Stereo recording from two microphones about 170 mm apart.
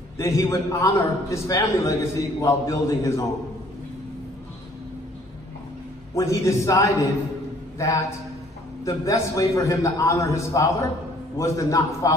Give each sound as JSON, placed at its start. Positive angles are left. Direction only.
{"t": 0.2, "sound": "a man's voice", "side_deg": 15}
{"t": 6.1, "sound": "a man's voice", "side_deg": 15}
{"t": 8.8, "sound": "a man's voice", "side_deg": 20}